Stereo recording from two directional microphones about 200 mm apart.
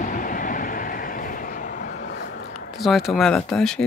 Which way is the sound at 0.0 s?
40° left (ahead or behind).